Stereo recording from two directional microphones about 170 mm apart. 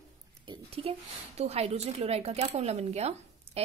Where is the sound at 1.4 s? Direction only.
40° right (ahead or behind).